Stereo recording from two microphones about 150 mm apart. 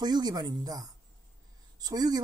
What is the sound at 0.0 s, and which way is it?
Speech, 30° right (ahead or behind).